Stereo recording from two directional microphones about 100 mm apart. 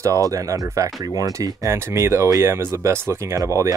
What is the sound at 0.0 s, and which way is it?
Speech, 35° right (ahead or behind).